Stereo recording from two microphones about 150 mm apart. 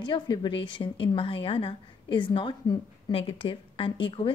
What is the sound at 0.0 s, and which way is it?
A woman's voice, 30° left (ahead or behind).